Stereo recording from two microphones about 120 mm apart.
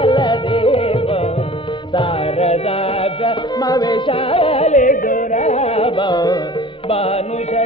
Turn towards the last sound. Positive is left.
turn(degrees=55)  # may be behind; listen again after turning